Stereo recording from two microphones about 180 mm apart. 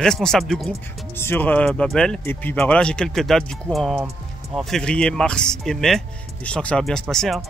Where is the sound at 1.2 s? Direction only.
10° left (ahead or behind).